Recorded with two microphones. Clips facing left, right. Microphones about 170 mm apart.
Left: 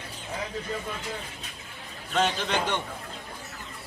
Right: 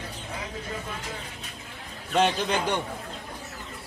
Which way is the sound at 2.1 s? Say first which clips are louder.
Right 2 dB; 15° right (ahead or behind).